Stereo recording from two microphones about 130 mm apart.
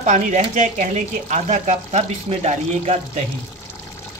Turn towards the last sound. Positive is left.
turn(degrees=-55)  # may be behind; listen again after turning